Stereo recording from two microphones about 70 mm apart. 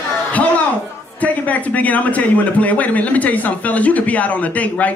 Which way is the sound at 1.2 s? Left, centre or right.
Left.